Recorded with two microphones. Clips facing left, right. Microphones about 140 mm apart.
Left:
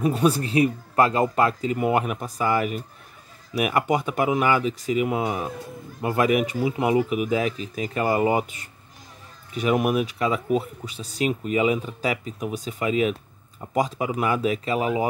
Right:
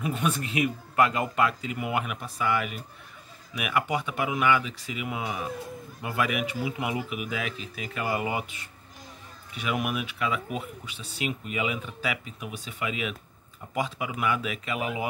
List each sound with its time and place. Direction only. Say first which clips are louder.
0.0 s speech: left 8 dB; 35° left (ahead or behind)